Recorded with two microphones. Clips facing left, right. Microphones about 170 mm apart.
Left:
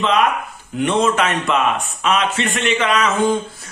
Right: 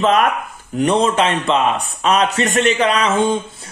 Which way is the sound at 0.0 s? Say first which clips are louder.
Right 2 dB; 45° right (ahead or behind).